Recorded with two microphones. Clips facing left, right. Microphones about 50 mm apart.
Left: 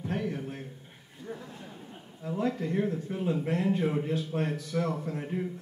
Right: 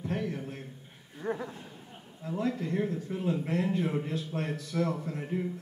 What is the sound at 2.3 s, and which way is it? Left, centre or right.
A man's voice, left.